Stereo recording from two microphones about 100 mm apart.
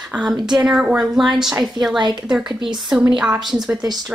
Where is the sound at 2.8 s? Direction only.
5° right (ahead or behind).